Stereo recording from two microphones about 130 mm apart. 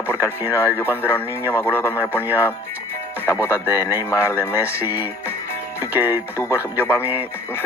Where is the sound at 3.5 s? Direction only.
15° right (ahead or behind).